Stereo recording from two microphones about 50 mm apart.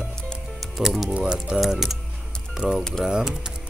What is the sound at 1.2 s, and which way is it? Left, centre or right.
Speech, centre.